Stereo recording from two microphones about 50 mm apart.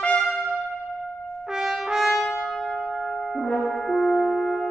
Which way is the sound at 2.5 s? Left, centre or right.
Centre.